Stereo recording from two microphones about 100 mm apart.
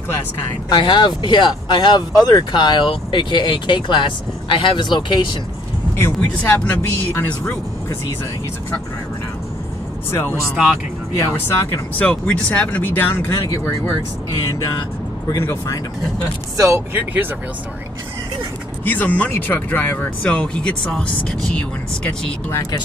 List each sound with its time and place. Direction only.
0.7 s speech: 50° left (ahead or behind)
5.9 s speech: 20° left (ahead or behind)
10.5 s speech: 10° right (ahead or behind)
11.1 s speech: 25° left (ahead or behind)
12.0 s speech: 10° left (ahead or behind)
15.3 s speech: 30° left (ahead or behind)
16.9 s speech: 20° right (ahead or behind)
18.9 s speech: 15° left (ahead or behind)